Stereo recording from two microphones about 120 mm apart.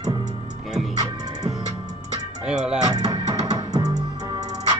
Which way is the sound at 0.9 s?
30° right (ahead or behind).